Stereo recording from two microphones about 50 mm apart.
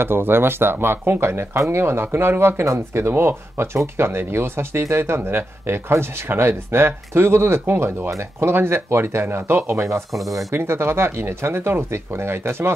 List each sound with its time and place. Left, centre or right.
0.0 s speech: right
3.1 s speech: right
10.5 s speech: right